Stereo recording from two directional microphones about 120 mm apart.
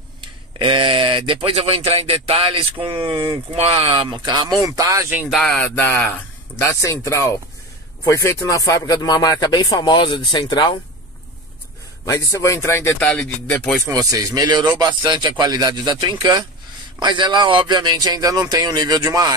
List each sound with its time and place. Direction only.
0.6 s speech: 50° right (ahead or behind)
4.6 s speech: 25° right (ahead or behind)
5.3 s a sound: 5° left (ahead or behind)
6.6 s speech: 25° left (ahead or behind); by 10.8 s 40° left (ahead or behind)
12.0 s speech: 25° left (ahead or behind)
13.1 s a sound: 15° left (ahead or behind)
13.8 s speech: 30° right (ahead or behind)